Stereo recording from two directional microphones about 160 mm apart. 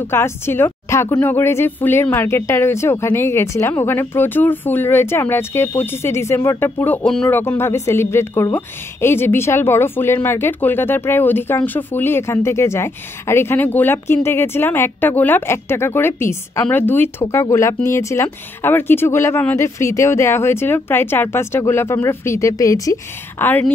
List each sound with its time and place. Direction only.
0.1 s a woman's voice: 15° left (ahead or behind)